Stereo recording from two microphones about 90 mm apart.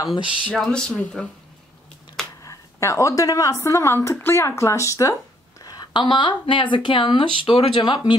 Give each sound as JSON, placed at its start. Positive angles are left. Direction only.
{"t": 0.1, "sound": "speech", "side_deg": 65}
{"t": 0.5, "sound": "speech", "side_deg": 5}
{"t": 2.4, "sound": "a woman's voice", "side_deg": 35}
{"t": 5.6, "sound": "speech", "side_deg": 50}